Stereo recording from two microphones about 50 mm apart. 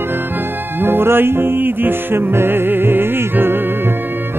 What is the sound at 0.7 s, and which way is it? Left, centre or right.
Music, right.